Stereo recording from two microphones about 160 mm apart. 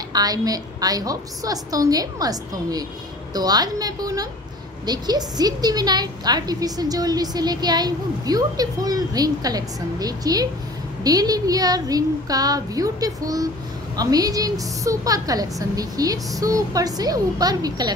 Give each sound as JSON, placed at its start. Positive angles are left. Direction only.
{"t": 0.1, "sound": "a woman's voice", "side_deg": -25}